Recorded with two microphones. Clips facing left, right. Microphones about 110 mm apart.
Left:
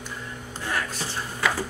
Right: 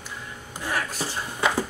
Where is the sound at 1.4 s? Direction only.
20° right (ahead or behind).